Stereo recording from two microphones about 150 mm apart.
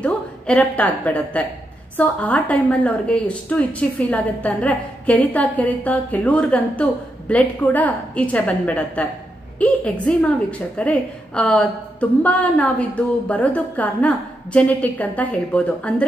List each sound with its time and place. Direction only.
0.0 s a woman's voice: 10° left (ahead or behind)